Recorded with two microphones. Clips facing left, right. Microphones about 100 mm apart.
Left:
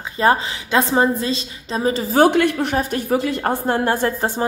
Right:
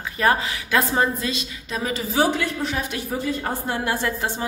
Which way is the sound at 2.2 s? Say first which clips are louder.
Left 7 dB; 65° left (ahead or behind).